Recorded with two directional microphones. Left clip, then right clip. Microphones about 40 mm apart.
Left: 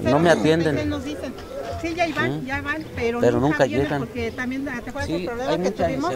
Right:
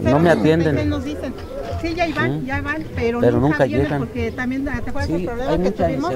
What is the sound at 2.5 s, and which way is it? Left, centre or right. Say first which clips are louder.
Speech: right 2 dB; left.